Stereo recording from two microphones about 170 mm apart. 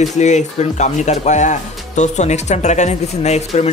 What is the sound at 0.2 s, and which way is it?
Speech, 45° left (ahead or behind).